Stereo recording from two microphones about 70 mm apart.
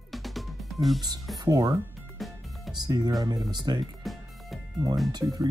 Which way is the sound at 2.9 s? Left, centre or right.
Right.